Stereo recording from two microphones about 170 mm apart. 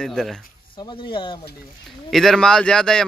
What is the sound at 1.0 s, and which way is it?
Speech, 30° left (ahead or behind).